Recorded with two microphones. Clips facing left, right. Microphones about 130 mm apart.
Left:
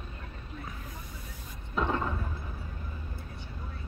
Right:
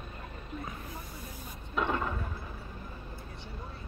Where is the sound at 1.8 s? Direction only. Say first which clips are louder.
Left 1 dB; centre (ahead or behind).